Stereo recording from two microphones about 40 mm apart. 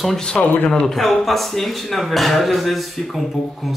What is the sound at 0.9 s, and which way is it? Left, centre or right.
A man's voice, centre.